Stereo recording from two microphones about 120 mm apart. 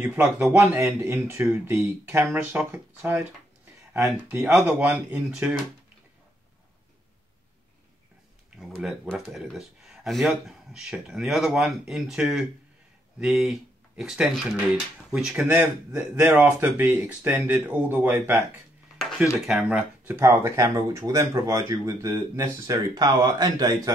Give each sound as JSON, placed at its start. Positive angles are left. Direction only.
{"t": 0.0, "sound": "speech", "side_deg": -10}
{"t": 0.6, "sound": "speech", "side_deg": -20}
{"t": 4.3, "sound": "speech", "side_deg": -10}
{"t": 8.5, "sound": "speech", "side_deg": -5}